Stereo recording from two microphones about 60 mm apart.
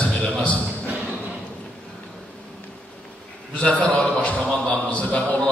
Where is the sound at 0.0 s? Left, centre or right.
Left.